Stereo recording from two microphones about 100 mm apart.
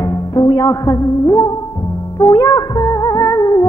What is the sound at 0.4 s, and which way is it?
Music, 40° left (ahead or behind).